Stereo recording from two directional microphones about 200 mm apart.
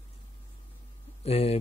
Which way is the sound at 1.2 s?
30° left (ahead or behind).